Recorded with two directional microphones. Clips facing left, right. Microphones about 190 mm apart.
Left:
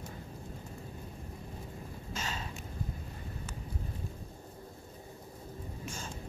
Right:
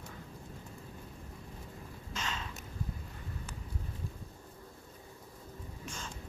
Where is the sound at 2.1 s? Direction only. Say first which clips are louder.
Even; 35° left (ahead or behind).